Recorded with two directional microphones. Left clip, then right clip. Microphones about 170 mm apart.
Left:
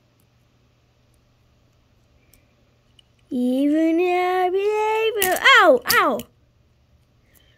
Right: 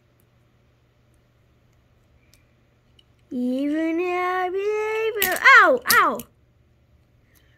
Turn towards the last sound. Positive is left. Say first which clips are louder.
# left 2 dB
turn(degrees=30)  # may be behind; listen again after turning